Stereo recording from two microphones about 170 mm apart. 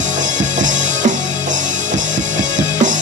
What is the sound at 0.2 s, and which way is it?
Music, 45° right (ahead or behind).